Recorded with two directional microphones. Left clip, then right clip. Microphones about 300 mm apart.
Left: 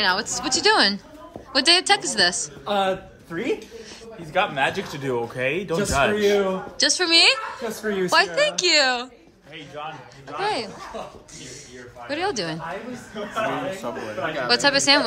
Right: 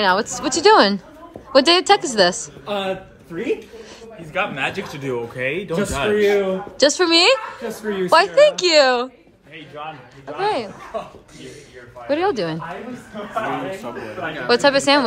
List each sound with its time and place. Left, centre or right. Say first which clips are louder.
0.0 s a man's voice: right 4 dB; centre
4.3 s a man's voice: left 1 dB; left
5.1 s a man's voice: right 1 dB; centre
12.1 s a man's voice: right 6 dB; centre